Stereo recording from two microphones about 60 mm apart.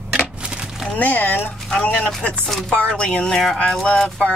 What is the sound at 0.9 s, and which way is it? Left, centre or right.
Speech, left.